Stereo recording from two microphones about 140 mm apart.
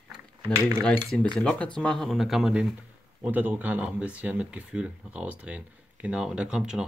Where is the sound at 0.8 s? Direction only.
10° left (ahead or behind).